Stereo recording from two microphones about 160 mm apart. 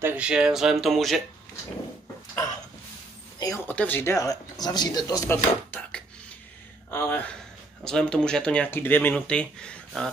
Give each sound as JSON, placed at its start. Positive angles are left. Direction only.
{"t": 0.0, "sound": "speech", "side_deg": -10}
{"t": 3.3, "sound": "a sound", "side_deg": 20}
{"t": 3.6, "sound": "speech", "side_deg": 10}
{"t": 5.7, "sound": "dishes", "side_deg": 5}
{"t": 6.9, "sound": "speech", "side_deg": 15}